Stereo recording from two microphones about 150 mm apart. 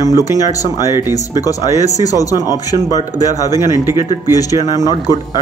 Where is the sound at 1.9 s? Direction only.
25° left (ahead or behind).